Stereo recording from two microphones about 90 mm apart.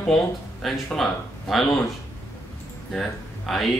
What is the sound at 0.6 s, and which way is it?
A woman's voice, 5° left (ahead or behind).